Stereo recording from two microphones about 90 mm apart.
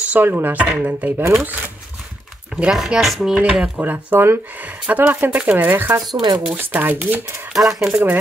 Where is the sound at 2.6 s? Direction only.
10° right (ahead or behind).